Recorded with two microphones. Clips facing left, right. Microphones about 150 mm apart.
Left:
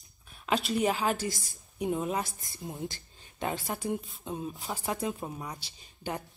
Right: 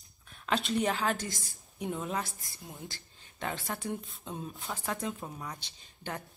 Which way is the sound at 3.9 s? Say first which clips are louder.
Left 4 dB; 5° left (ahead or behind).